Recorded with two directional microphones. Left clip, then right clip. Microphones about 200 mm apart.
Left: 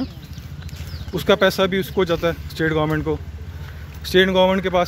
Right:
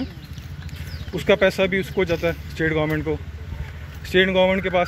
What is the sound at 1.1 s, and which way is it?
Speech, 20° left (ahead or behind).